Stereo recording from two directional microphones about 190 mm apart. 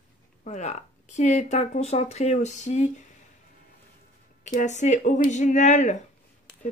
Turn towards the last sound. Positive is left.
turn(degrees=40)  # may be behind; listen again after turning